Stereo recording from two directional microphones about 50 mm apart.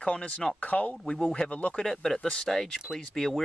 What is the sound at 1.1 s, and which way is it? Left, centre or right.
Speech, centre.